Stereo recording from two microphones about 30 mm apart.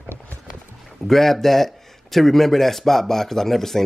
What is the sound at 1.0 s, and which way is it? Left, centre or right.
Speech, centre.